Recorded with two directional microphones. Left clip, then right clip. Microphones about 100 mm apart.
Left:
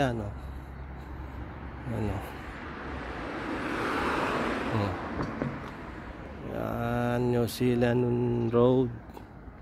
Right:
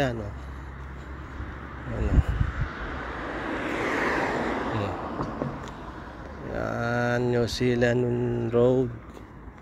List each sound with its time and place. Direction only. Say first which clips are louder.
1.9 s vehicle: right 3 dB; 15° left (ahead or behind); by 4.4 s 5° right (ahead or behind)
4.4 s vehicle: right 2 dB; 25° right (ahead or behind)
6.5 s a sound: right 4 dB; 20° left (ahead or behind)
7.2 s speech: right 3 dB; 30° left (ahead or behind)